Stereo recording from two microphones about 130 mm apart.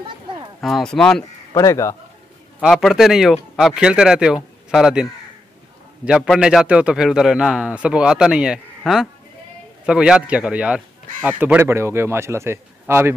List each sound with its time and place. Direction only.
0.6 s a man's voice: centre (ahead or behind)
1.5 s speech: 25° left (ahead or behind)
2.6 s a man's voice: centre (ahead or behind)
6.0 s a man's voice: 5° right (ahead or behind); by 13.1 s 20° right (ahead or behind)